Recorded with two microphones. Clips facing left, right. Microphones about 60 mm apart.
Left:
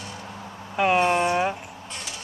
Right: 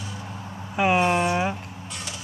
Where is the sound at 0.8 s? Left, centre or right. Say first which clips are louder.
Even; centre.